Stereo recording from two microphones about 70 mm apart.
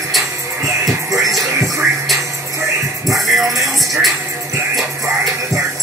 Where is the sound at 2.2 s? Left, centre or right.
Right.